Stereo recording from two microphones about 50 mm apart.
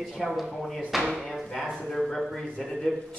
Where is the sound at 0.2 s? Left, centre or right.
Centre.